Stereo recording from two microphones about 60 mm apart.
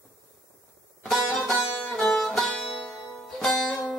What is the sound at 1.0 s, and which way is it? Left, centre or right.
Music, centre.